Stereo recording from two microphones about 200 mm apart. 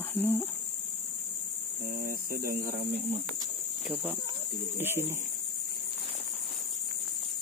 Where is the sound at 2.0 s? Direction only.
45° right (ahead or behind).